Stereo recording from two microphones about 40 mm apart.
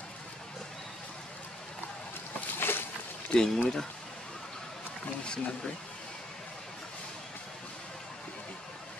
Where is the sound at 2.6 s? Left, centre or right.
Left.